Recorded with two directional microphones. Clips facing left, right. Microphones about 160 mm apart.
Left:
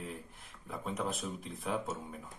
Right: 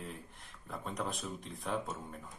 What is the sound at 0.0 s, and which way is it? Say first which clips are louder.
Speech: left 2 dB; centre (ahead or behind).